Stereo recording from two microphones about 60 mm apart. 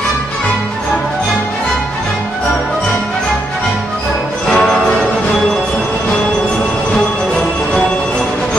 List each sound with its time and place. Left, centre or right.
4.5 s music: centre